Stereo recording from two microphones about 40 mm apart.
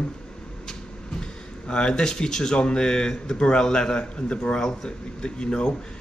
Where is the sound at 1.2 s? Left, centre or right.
Centre.